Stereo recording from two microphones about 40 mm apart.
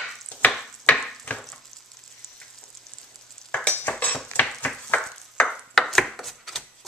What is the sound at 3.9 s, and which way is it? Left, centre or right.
Cutlery, left.